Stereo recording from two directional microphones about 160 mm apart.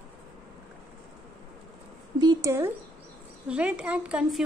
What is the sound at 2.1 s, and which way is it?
Speech, 25° right (ahead or behind).